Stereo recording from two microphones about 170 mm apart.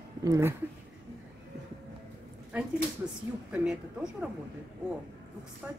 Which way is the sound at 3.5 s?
5° right (ahead or behind).